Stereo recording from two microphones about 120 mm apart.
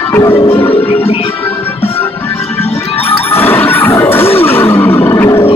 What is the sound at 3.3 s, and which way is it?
Music, 15° left (ahead or behind).